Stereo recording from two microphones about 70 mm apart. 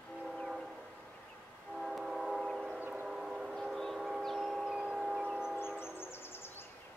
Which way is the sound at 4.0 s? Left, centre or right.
Centre.